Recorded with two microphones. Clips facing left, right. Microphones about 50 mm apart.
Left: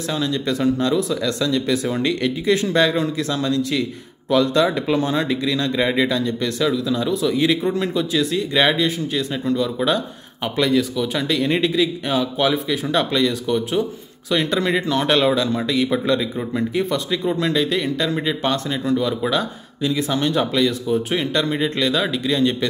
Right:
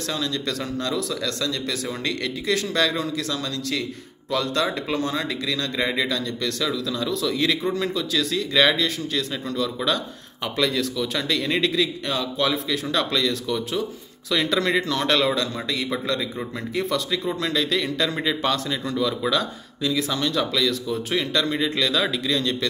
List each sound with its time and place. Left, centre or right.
0.1 s speech: centre
4.9 s a man's voice: left
21.7 s a man's voice: centre
22.4 s a man's voice: centre